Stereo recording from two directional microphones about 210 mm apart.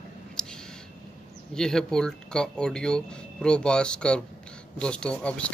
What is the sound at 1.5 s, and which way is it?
Speech, 5° left (ahead or behind).